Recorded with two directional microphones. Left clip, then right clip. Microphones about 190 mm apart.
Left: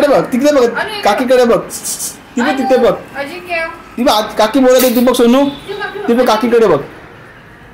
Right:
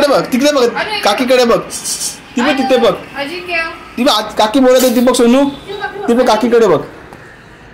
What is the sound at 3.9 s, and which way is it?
Speech, 5° left (ahead or behind).